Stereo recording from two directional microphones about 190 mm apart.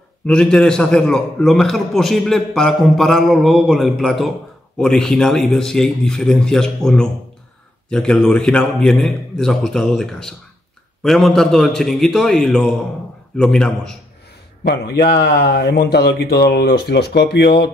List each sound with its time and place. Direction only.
0.3 s a man's voice: 5° left (ahead or behind)
14.6 s speech: 60° left (ahead or behind)